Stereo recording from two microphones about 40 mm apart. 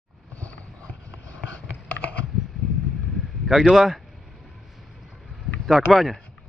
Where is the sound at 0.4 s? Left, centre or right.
Left.